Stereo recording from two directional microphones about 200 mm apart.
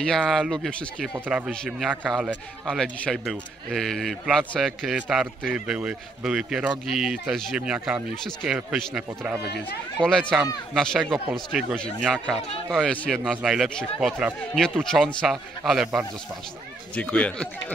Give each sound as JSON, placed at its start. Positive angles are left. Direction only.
{"t": 0.0, "sound": "a man's voice", "side_deg": 0}
{"t": 1.1, "sound": "a man's voice", "side_deg": -5}
{"t": 9.4, "sound": "speech", "side_deg": 55}
{"t": 9.9, "sound": "a man's voice", "side_deg": 5}
{"t": 16.9, "sound": "speech", "side_deg": 5}